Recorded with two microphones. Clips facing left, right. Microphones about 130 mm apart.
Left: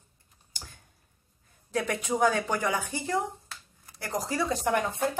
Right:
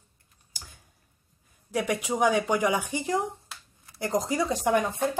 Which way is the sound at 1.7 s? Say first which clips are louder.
Right 1 dB; 15° right (ahead or behind).